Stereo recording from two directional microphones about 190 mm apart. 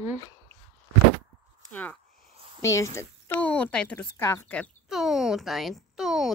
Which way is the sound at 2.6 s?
15° left (ahead or behind).